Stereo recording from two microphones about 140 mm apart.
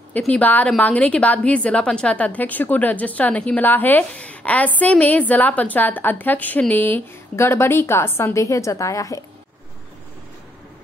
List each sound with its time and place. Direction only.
0.3 s a woman's voice: 10° left (ahead or behind)